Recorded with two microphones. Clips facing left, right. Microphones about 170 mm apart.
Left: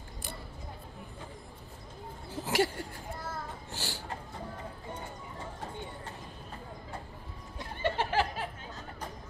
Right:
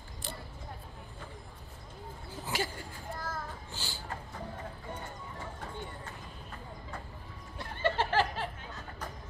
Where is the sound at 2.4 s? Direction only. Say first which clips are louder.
Left 7 dB; 75° left (ahead or behind).